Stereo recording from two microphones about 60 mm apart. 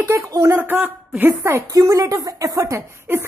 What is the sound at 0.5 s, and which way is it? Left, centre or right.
Speech, right.